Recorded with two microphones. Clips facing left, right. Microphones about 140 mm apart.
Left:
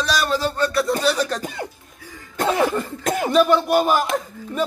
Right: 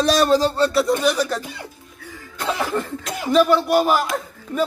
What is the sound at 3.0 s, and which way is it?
Speech, 50° left (ahead or behind).